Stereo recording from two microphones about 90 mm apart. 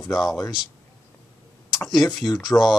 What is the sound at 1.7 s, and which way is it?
Speech, centre (ahead or behind).